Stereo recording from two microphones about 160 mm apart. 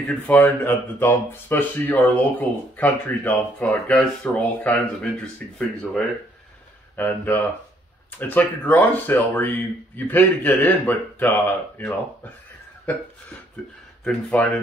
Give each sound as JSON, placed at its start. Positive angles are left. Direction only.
{"t": 0.0, "sound": "speech", "side_deg": 5}
{"t": 13.6, "sound": "speech", "side_deg": 5}